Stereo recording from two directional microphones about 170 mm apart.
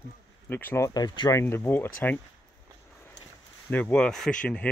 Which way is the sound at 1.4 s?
15° left (ahead or behind).